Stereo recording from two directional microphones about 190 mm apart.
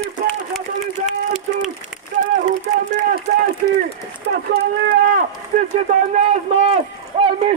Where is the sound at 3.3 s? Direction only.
50° right (ahead or behind).